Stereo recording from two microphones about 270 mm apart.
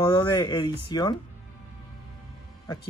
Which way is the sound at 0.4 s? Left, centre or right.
Centre.